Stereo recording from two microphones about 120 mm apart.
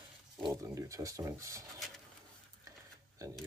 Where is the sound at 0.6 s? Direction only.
25° right (ahead or behind).